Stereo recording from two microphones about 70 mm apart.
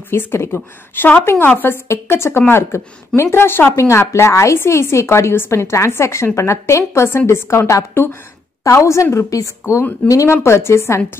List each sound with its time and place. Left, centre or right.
0.1 s a woman's voice: left
1.9 s a woman's voice: left
3.7 s a woman's voice: left